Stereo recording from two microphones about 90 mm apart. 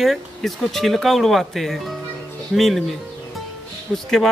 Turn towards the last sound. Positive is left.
turn(degrees=5)  # may be behind; listen again after turning